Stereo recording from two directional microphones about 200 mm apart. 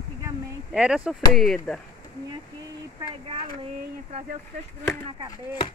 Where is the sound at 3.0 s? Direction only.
30° right (ahead or behind).